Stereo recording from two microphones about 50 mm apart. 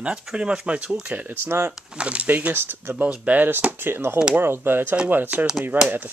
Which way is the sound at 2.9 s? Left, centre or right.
Right.